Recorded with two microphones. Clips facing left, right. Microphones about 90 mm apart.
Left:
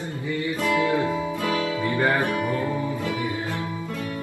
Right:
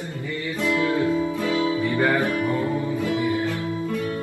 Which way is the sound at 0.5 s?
20° left (ahead or behind).